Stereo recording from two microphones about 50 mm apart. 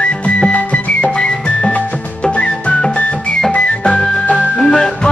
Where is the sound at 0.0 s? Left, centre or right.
Left.